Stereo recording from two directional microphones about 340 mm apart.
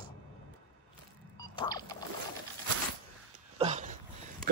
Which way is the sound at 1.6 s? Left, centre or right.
Centre.